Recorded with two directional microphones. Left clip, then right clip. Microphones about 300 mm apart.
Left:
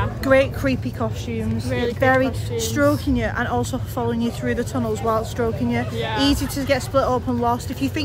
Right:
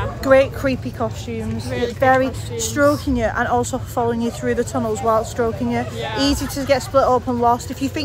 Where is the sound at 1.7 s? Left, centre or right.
Centre.